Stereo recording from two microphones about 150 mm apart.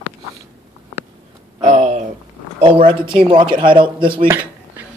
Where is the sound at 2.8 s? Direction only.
35° right (ahead or behind).